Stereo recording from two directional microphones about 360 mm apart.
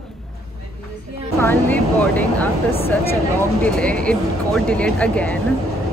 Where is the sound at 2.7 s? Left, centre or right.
Centre.